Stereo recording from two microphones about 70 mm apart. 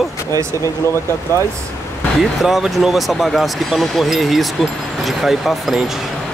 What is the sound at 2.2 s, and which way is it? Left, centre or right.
Speech, centre.